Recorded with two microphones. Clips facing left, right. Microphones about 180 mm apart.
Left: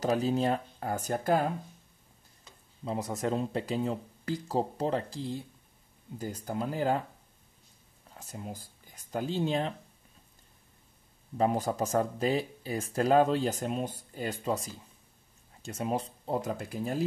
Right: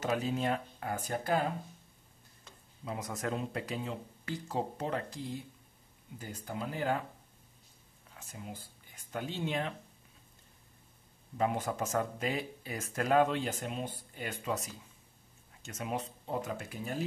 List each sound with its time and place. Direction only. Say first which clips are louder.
0.0 s speech: left 5 dB; 35° left (ahead or behind)
2.8 s speech: left 5 dB; 30° left (ahead or behind)
8.2 s speech: left 4 dB; 40° left (ahead or behind)
11.3 s speech: left 4 dB; 35° left (ahead or behind)